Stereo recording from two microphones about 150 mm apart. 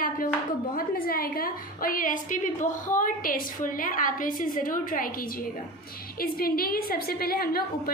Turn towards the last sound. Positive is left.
turn(degrees=90)